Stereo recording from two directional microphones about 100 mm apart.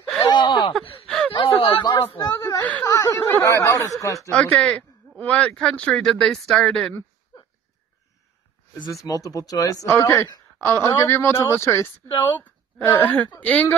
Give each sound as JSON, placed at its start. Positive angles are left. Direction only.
{"t": 0.3, "sound": "a sound", "side_deg": 50}
{"t": 1.0, "sound": "a sound", "side_deg": 5}
{"t": 1.3, "sound": "a sound", "side_deg": 65}
{"t": 2.2, "sound": "chuckle", "side_deg": 40}
{"t": 2.8, "sound": "snicker", "side_deg": 35}
{"t": 3.2, "sound": "speech", "side_deg": 25}
{"t": 4.3, "sound": "speech", "side_deg": 10}
{"t": 8.7, "sound": "speech", "side_deg": 45}
{"t": 12.1, "sound": "speech", "side_deg": 55}
{"t": 12.4, "sound": "a woman's voice", "side_deg": 15}